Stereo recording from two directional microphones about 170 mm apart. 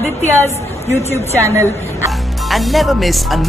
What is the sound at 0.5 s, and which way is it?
Speech, 15° left (ahead or behind).